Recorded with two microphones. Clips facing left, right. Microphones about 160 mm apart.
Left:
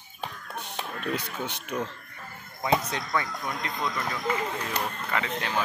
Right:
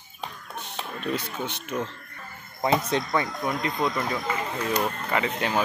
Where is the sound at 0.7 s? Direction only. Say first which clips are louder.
Right 2 dB; 10° left (ahead or behind).